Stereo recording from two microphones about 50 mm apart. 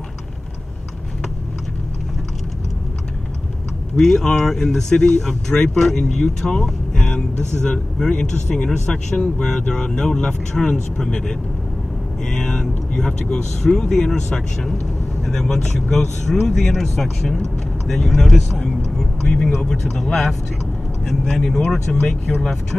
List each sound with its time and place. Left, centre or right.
3.9 s speech: centre
6.6 s vehicle: centre
7.2 s speech: centre
12.4 s speech: centre